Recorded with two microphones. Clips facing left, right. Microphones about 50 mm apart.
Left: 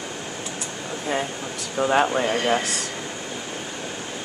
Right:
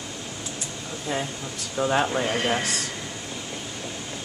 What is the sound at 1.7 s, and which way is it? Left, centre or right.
Speech, centre.